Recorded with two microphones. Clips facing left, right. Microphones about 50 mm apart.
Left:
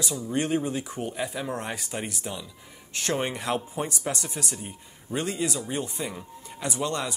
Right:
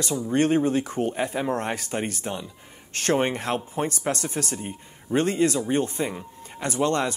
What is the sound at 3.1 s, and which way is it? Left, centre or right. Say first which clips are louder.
A man's voice: right 2 dB; right.